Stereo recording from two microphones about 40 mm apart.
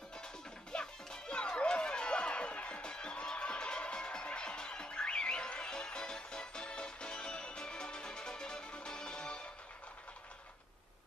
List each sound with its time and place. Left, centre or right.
0.7 s music: centre